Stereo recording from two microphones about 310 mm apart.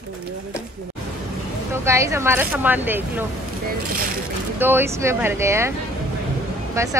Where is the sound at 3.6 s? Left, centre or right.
Right.